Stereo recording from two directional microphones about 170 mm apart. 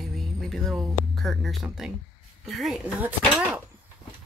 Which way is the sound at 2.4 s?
Centre (ahead or behind).